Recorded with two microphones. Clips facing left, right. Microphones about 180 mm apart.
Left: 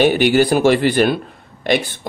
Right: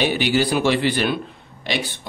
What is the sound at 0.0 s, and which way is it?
A man's voice, 50° left (ahead or behind).